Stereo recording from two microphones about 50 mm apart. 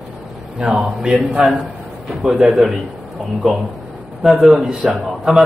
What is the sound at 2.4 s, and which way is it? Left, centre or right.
Speech, centre.